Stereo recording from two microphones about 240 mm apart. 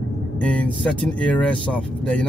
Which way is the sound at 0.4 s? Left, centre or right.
Centre.